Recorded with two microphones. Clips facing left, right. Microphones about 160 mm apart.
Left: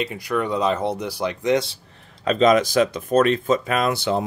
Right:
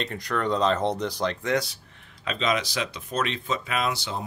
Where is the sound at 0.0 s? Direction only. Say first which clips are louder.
Left 4 dB; 10° left (ahead or behind).